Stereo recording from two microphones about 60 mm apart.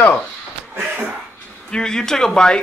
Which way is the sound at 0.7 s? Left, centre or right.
Right.